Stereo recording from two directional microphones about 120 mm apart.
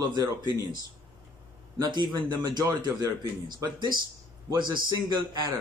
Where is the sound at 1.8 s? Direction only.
35° right (ahead or behind).